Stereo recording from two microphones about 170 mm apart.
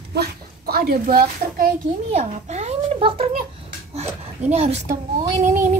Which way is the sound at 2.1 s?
40° right (ahead or behind).